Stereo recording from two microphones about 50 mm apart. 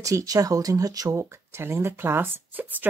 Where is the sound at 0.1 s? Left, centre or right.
Right.